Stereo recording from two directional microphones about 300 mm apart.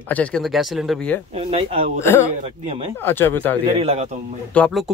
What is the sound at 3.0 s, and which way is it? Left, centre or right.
Speech, centre.